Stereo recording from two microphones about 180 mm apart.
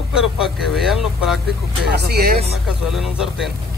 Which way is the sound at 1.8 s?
65° right (ahead or behind).